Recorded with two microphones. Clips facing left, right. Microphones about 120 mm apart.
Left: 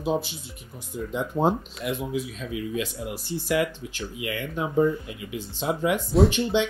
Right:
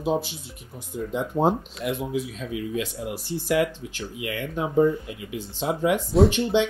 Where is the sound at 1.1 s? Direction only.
25° right (ahead or behind).